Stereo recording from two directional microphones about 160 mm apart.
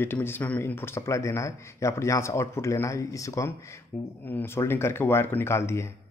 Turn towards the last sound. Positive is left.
turn(degrees=15)  # may be behind; listen again after turning